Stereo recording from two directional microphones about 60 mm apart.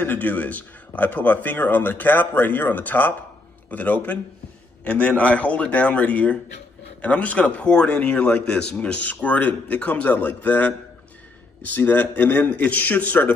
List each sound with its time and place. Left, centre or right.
0.0 s speech: left